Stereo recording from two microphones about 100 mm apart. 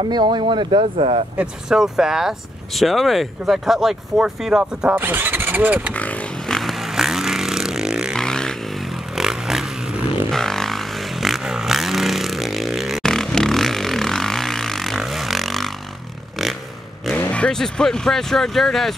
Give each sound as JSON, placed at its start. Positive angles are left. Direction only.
{"t": 0.0, "sound": "speech", "side_deg": -45}
{"t": 0.9, "sound": "speech", "side_deg": -90}
{"t": 1.4, "sound": "speech", "side_deg": -5}
{"t": 4.9, "sound": "speech", "side_deg": -20}
{"t": 5.9, "sound": "vehicle", "side_deg": 15}
{"t": 8.2, "sound": "vehicle", "side_deg": 5}
{"t": 17.2, "sound": "speech", "side_deg": 10}